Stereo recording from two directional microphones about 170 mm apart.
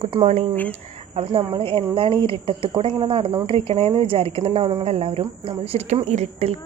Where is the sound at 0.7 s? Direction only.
35° right (ahead or behind).